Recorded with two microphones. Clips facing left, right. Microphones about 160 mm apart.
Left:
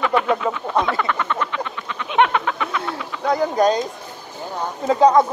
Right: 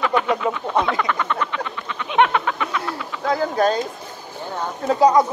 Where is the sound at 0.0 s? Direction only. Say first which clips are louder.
Left 1 dB; centre (ahead or behind).